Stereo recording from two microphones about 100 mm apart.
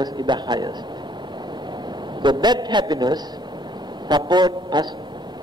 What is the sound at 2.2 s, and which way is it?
A man's voice, 50° right (ahead or behind).